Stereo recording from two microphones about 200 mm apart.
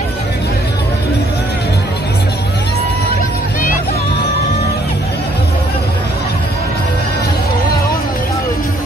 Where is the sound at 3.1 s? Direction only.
50° left (ahead or behind).